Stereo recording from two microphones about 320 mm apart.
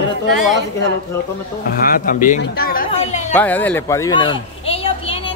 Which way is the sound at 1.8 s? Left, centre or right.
Left.